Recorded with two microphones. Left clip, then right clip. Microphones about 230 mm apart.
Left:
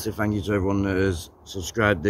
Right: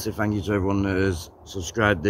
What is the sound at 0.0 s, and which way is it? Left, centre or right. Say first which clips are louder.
Speech: even; centre.